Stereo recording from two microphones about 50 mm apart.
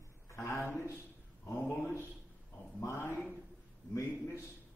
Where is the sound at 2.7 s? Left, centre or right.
Left.